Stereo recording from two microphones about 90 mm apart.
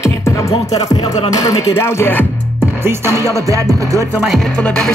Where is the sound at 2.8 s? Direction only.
30° right (ahead or behind).